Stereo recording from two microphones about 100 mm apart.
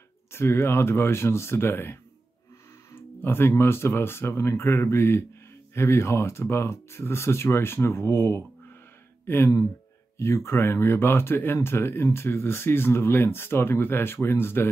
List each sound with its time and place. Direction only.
0.3 s speech: 25° left (ahead or behind)